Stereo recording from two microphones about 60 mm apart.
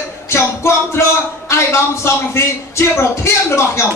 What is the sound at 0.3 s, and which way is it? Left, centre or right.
Music, left.